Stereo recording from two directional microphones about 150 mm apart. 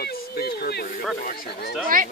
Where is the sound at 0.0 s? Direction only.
90° left.